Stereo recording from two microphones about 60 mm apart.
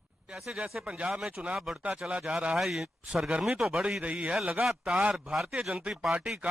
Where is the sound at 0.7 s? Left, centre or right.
Right.